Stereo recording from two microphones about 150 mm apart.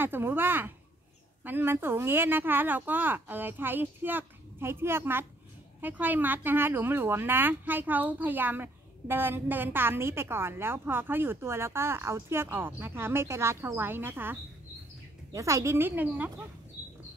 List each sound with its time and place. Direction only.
0.0 s a woman's voice: 15° right (ahead or behind)